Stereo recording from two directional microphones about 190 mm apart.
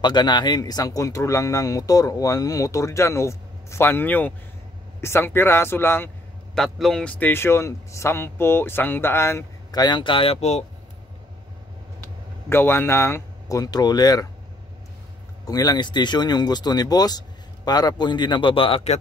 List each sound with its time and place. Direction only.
0.0 s a man's voice: 20° left (ahead or behind)
6.5 s a man's voice: centre (ahead or behind); by 10.6 s 35° left (ahead or behind)
12.4 s a man's voice: 10° left (ahead or behind)
15.4 s speech: 20° left (ahead or behind)